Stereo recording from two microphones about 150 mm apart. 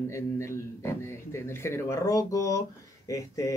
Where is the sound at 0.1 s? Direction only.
20° left (ahead or behind).